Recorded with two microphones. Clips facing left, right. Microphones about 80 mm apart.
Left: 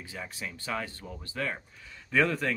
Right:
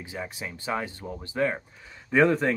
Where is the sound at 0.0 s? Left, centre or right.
Centre.